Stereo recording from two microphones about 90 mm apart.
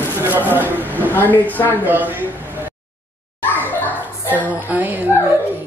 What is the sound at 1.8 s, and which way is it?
Speech, 20° right (ahead or behind).